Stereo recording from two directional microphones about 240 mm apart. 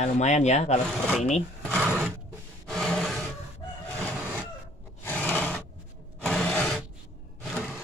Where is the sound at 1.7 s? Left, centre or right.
Centre.